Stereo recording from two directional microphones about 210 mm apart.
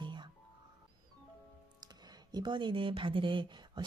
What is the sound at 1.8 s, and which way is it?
Speech, 20° right (ahead or behind).